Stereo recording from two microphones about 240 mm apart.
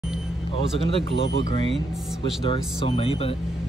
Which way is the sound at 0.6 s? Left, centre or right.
Left.